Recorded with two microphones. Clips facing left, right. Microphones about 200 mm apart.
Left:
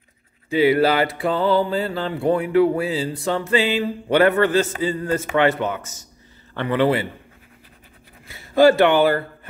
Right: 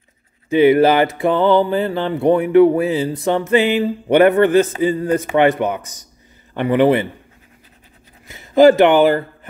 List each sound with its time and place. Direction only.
0.5 s music: 20° right (ahead or behind)
4.1 s a man's voice: 20° right (ahead or behind)
8.3 s speech: 20° right (ahead or behind)